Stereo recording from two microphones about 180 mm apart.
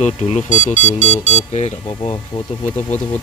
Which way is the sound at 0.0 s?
40° left (ahead or behind).